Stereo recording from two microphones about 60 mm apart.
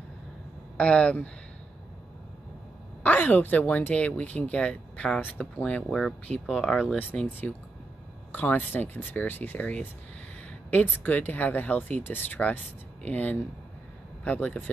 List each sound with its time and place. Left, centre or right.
0.7 s speech: centre
3.0 s speech: left; by 7.0 s centre
7.4 s speech: left
11.0 s speech: left